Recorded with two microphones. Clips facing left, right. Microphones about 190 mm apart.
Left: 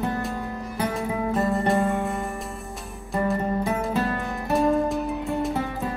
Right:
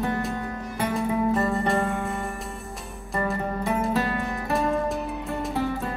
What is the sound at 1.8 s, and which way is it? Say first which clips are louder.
Music: left 3 dB; 15° left (ahead or behind).